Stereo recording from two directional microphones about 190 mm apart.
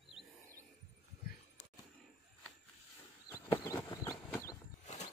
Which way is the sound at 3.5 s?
15° left (ahead or behind).